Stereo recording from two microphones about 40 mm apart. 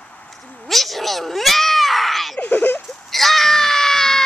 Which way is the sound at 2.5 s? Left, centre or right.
Left.